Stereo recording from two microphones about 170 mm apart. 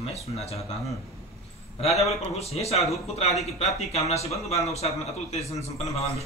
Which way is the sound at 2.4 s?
40° left (ahead or behind).